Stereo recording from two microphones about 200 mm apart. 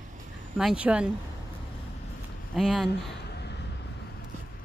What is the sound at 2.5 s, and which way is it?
Speech, centre (ahead or behind).